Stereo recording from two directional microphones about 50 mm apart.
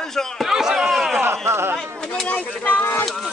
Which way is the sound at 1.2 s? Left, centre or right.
Right.